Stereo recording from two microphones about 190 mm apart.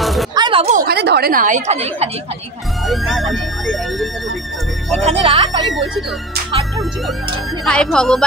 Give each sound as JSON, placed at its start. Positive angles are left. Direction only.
{"t": 0.0, "sound": "a sound", "side_deg": 0}
{"t": 0.3, "sound": "a sound", "side_deg": -25}
{"t": 0.7, "sound": "a woman's voice", "side_deg": -55}
{"t": 2.9, "sound": "speech", "side_deg": 0}
{"t": 5.0, "sound": "speech", "side_deg": -30}
{"t": 5.7, "sound": "speech", "side_deg": 0}
{"t": 7.6, "sound": "speech", "side_deg": 5}